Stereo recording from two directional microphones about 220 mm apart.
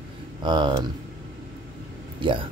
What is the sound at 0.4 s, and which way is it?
Speech, 20° right (ahead or behind).